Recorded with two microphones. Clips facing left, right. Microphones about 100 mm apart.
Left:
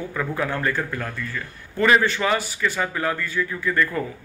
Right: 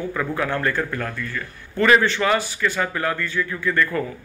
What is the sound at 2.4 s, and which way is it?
Speech, 5° left (ahead or behind).